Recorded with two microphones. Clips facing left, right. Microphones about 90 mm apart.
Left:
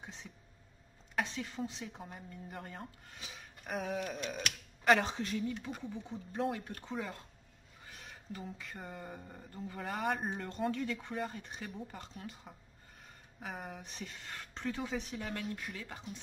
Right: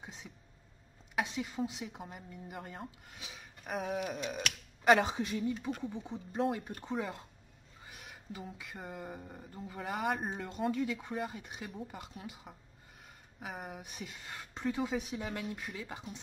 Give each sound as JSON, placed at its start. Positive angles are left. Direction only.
{"t": 0.0, "sound": "a sound", "side_deg": -10}
{"t": 1.1, "sound": "speech", "side_deg": -10}
{"t": 6.3, "sound": "speech", "side_deg": -5}
{"t": 6.7, "sound": "speech", "side_deg": -15}